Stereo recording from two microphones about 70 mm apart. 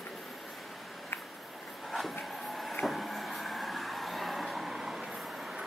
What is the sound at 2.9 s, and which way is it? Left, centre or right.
Train, centre.